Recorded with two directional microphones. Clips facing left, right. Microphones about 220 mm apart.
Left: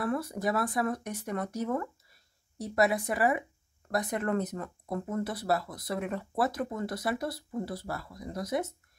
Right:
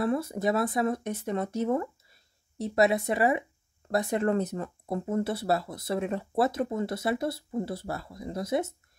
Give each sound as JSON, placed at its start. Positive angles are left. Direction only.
{"t": 0.0, "sound": "speech", "side_deg": -25}